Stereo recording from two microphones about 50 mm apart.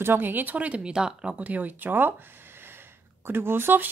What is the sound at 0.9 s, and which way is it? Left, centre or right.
Speech, centre.